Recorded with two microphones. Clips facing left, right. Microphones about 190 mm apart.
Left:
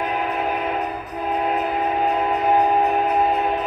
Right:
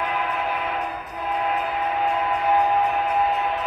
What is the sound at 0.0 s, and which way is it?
Train, 40° left (ahead or behind).